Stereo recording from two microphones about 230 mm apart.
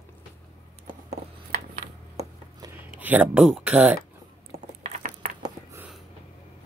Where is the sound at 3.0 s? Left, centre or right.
Centre.